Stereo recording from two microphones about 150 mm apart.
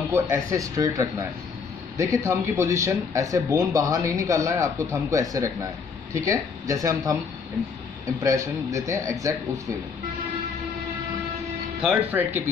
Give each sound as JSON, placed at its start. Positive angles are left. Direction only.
{"t": 0.3, "sound": "speech", "side_deg": -20}
{"t": 8.2, "sound": "speech", "side_deg": -20}
{"t": 11.8, "sound": "speech", "side_deg": -10}